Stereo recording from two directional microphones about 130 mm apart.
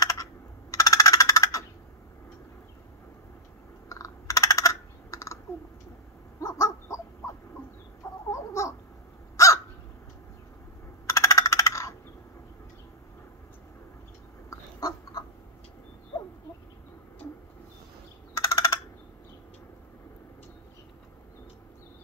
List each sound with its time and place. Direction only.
0.0 s computer keyboard: 25° left (ahead or behind)
3.9 s computer keyboard: 25° left (ahead or behind)
6.4 s bird: 25° left (ahead or behind)
8.3 s bird: 25° left (ahead or behind)
11.1 s coin: 25° left (ahead or behind)
14.5 s a sound: 25° left (ahead or behind)
18.3 s a sound: 25° left (ahead or behind)